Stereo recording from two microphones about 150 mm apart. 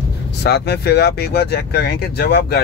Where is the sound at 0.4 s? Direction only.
90° left.